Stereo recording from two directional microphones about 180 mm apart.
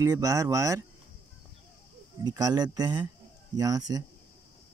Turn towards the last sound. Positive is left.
turn(degrees=-20)  # may be behind; listen again after turning